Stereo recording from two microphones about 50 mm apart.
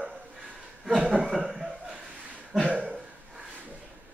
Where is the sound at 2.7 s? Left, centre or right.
Right.